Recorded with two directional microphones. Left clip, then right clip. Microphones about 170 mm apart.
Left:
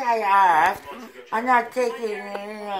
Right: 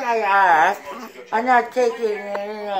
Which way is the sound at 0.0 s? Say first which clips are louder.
Right 1 dB; 20° left (ahead or behind).